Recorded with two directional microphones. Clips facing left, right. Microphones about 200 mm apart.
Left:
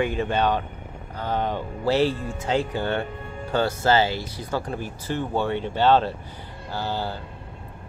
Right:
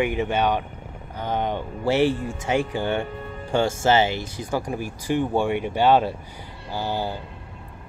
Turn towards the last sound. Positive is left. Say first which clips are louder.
# right 2 dB
turn(degrees=-15)  # may be behind; listen again after turning